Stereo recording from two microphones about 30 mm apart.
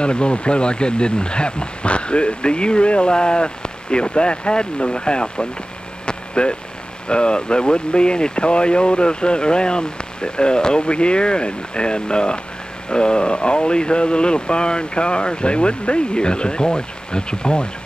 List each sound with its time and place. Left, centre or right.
0.0 s speech: left
6.0 s vehicle: left
7.1 s speech: left